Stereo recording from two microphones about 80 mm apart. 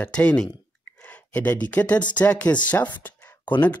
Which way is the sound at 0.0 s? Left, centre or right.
Centre.